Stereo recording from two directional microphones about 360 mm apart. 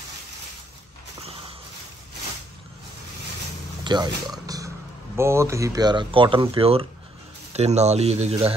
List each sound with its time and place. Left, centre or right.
3.8 s speech: centre
4.3 s a sound: centre
5.1 s speech: centre